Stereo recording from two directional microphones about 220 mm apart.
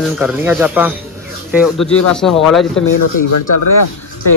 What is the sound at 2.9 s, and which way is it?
Speech, 70° left (ahead or behind).